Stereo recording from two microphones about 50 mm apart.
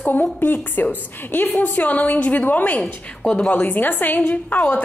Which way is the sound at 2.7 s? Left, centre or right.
Left.